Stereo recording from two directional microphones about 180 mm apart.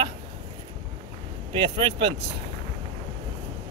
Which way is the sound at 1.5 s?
25° right (ahead or behind).